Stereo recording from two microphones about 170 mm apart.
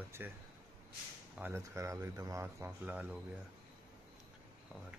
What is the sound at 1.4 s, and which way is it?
Speech, 15° right (ahead or behind).